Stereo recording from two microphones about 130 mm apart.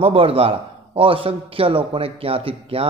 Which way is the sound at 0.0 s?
50° right (ahead or behind).